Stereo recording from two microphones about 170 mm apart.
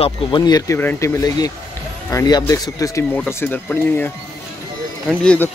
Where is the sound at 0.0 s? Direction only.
25° left (ahead or behind).